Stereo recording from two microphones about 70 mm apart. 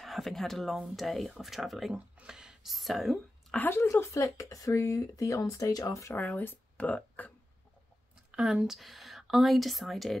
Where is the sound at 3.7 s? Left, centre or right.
Left.